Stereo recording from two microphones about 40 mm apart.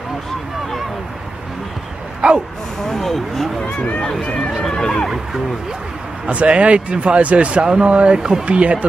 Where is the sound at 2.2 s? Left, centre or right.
Right.